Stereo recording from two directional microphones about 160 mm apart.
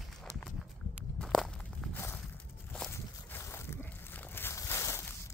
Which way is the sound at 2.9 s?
15° left (ahead or behind).